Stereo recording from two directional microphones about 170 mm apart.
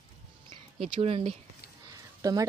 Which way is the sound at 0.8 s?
40° right (ahead or behind).